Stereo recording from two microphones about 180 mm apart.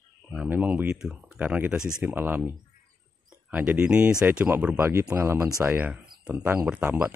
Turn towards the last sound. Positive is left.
turn(degrees=-10)  # may be behind; listen again after turning